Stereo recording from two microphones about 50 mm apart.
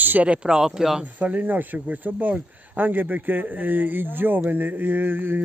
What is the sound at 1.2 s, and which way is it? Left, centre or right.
Speech, right.